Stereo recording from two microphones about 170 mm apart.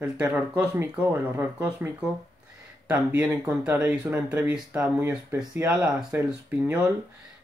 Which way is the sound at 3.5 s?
10° right (ahead or behind).